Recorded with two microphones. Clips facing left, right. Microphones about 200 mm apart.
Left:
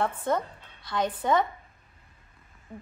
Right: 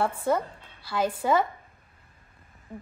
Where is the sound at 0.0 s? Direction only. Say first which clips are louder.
Right 2 dB; 10° right (ahead or behind).